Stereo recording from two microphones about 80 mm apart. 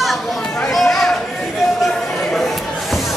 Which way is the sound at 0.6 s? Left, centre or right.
Centre.